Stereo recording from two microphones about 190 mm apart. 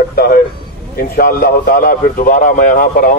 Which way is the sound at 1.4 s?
50° left (ahead or behind).